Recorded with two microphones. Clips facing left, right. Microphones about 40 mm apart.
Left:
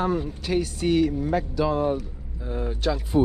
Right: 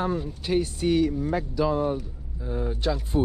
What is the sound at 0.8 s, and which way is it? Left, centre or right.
Speech, left.